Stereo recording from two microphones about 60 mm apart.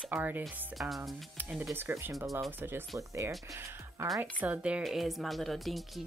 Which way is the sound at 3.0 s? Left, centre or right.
Right.